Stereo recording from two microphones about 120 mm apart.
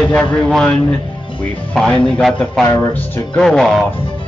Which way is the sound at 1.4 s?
10° left (ahead or behind).